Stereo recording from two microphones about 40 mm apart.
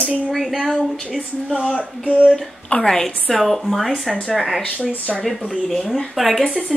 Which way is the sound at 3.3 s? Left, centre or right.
Centre.